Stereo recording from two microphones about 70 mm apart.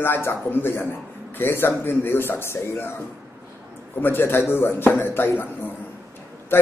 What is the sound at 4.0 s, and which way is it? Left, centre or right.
Speech, left.